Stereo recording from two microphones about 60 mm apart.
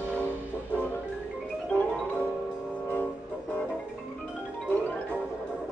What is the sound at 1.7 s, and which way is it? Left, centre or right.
Music, left.